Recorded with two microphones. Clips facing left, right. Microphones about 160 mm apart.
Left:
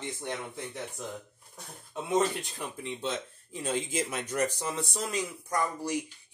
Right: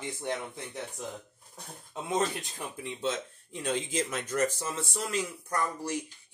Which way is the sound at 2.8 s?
Centre (ahead or behind).